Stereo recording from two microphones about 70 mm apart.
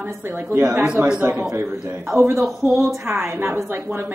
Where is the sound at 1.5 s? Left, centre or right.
Right.